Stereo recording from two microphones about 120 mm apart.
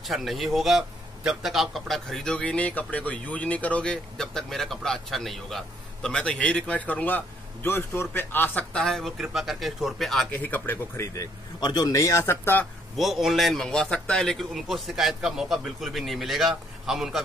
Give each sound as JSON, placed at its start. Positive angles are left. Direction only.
{"t": 0.0, "sound": "a man's voice", "side_deg": 0}
{"t": 10.3, "sound": "a man's voice", "side_deg": 15}
{"t": 11.6, "sound": "speech", "side_deg": 35}
{"t": 12.9, "sound": "a man's voice", "side_deg": 0}